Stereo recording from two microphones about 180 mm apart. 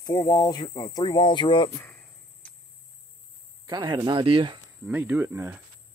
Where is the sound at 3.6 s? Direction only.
25° right (ahead or behind).